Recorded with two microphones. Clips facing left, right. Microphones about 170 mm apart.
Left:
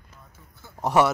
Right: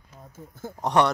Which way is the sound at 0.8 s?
5° left (ahead or behind).